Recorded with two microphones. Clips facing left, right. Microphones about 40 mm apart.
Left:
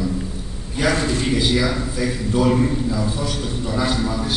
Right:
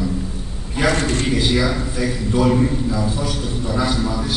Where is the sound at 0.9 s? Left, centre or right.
Right.